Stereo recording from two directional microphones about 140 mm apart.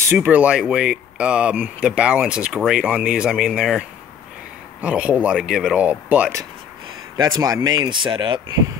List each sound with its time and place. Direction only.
0.1 s speech: 15° right (ahead or behind)
4.8 s speech: 10° right (ahead or behind)
7.2 s speech: 30° right (ahead or behind)